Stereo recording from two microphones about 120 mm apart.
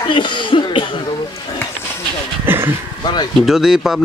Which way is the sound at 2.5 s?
20° right (ahead or behind).